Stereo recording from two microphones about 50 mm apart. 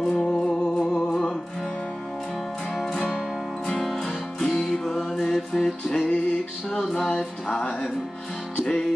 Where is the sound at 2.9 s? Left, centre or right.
Centre.